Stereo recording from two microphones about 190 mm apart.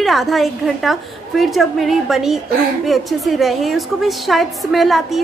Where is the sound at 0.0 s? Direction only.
Centre (ahead or behind).